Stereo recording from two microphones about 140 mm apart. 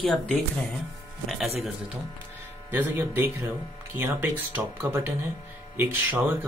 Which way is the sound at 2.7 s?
15° right (ahead or behind).